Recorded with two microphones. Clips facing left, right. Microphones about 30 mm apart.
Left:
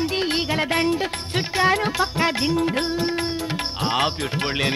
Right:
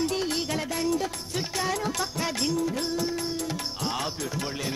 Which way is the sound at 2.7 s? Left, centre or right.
Left.